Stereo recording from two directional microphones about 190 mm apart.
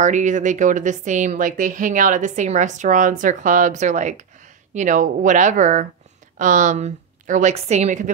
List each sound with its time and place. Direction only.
0.0 s a woman's voice: 40° right (ahead or behind)